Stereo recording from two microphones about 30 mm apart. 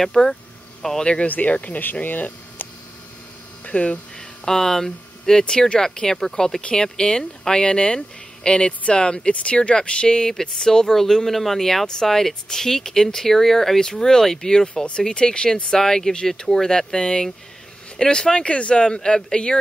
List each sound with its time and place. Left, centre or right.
0.0 s speech: centre
1.2 s speech: left
2.0 s a sound: left
3.6 s speech: left
4.5 s speech: centre
6.8 s speech: left
10.0 s speech: left
15.0 s speech: left
15.8 s speech: centre
18.5 s speech: left
18.9 s speech: left